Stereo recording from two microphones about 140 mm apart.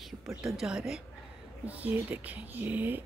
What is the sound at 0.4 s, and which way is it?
Speech, 5° right (ahead or behind).